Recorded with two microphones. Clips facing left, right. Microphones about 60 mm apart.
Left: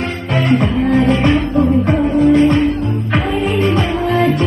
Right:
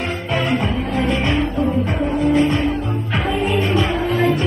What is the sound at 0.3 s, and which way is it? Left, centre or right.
Music, left.